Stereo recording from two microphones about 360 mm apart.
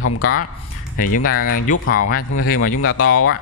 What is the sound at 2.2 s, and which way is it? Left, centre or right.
Speech, left.